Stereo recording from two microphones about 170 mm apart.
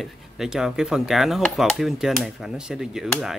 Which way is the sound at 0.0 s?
5° right (ahead or behind).